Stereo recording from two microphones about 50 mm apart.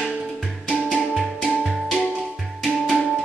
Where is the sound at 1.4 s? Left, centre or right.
Centre.